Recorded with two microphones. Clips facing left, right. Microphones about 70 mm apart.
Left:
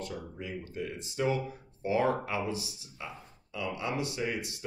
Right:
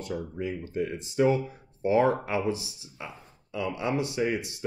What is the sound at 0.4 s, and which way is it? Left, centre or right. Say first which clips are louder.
Speech: right 7 dB; right.